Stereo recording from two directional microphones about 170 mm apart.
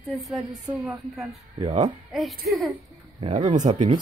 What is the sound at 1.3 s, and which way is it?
Speech, 40° right (ahead or behind).